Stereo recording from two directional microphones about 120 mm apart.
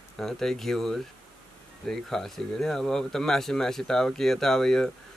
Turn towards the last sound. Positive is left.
turn(degrees=5)  # may be behind; listen again after turning